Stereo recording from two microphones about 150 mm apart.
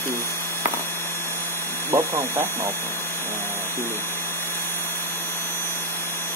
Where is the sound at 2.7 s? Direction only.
15° left (ahead or behind).